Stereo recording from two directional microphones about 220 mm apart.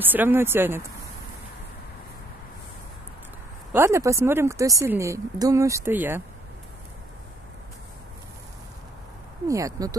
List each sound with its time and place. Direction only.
0.0 s speech: 10° right (ahead or behind)
3.7 s speech: 10° right (ahead or behind)
9.5 s speech: 15° right (ahead or behind)